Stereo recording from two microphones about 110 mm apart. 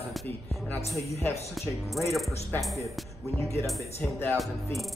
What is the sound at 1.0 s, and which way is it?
Speech, 25° left (ahead or behind).